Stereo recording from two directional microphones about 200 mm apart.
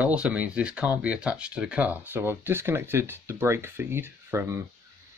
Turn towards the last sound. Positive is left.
turn(degrees=-15)  # may be behind; listen again after turning